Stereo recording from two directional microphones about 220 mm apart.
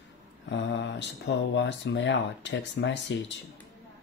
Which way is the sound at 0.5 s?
55° left (ahead or behind).